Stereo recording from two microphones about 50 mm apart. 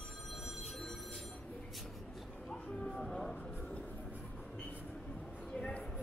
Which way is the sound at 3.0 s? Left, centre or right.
Centre.